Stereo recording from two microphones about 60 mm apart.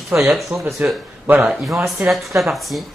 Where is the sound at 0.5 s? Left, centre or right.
Centre.